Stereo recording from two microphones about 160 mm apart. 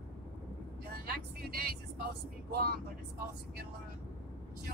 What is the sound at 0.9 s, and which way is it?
Speech, 75° right (ahead or behind).